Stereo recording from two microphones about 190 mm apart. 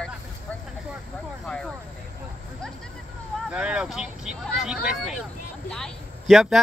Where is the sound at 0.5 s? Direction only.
5° left (ahead or behind).